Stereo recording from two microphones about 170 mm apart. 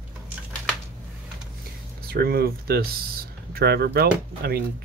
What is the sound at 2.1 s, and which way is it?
Speech, 65° right (ahead or behind).